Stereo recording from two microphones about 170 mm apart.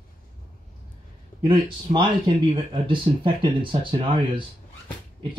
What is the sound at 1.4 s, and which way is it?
Speech, 30° right (ahead or behind).